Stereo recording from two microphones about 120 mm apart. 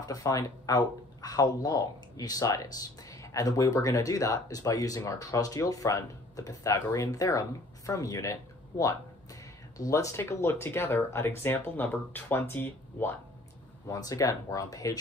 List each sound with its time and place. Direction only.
0.0 s speech: 30° left (ahead or behind)
13.8 s speech: 30° left (ahead or behind)